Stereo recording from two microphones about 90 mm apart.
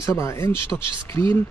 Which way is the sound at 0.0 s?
35° left (ahead or behind).